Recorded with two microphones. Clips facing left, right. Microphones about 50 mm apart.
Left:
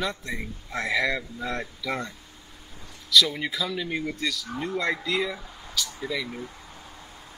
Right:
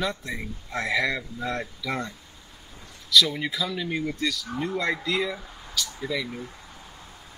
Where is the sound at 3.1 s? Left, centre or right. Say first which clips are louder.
Even; centre.